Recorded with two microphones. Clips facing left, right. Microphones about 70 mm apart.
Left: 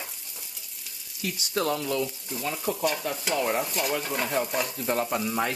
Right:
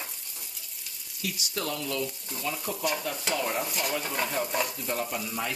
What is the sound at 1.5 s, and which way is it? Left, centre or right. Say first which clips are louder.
Frying: left 7 dB; left.